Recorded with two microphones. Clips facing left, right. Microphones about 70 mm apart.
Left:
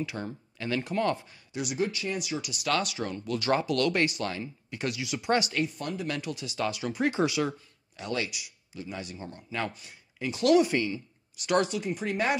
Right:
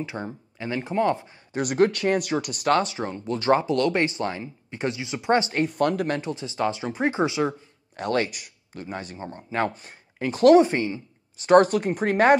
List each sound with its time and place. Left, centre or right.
0.0 s speech: right
1.5 s speech: right
5.5 s speech: right
6.1 s speech: right
7.9 s speech: right